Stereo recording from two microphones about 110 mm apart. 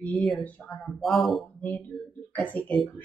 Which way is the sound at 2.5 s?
10° left (ahead or behind).